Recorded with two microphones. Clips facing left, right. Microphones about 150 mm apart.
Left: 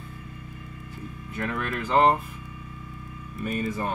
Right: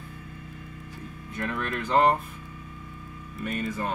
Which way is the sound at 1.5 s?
5° left (ahead or behind).